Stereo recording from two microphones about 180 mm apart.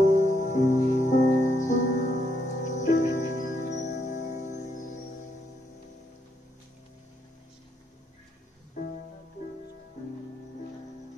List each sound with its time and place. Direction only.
0.1 s music: 45° left (ahead or behind)